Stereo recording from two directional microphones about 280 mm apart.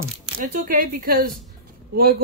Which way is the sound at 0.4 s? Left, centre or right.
Right.